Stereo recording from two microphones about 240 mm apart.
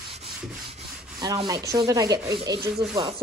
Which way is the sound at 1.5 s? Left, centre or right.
Centre.